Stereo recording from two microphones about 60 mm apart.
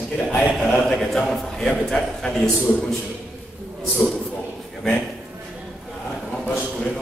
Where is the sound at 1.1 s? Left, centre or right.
Centre.